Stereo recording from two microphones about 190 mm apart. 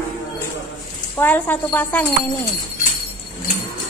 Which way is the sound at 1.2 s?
10° left (ahead or behind).